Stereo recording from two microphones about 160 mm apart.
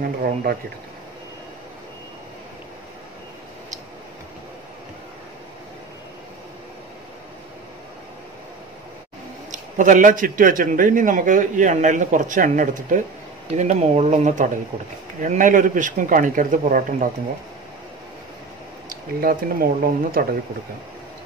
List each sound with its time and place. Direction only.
0.2 s a man's voice: 65° right (ahead or behind)
9.5 s a man's voice: 55° right (ahead or behind)
13.5 s a man's voice: 45° right (ahead or behind)
18.9 s a man's voice: 65° right (ahead or behind)